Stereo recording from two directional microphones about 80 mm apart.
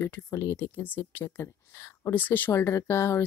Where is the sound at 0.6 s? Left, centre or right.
Left.